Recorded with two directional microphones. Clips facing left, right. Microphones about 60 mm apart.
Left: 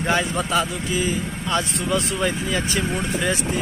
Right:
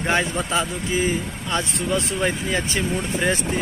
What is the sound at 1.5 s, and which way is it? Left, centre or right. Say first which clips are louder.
Speech: left 1 dB; right.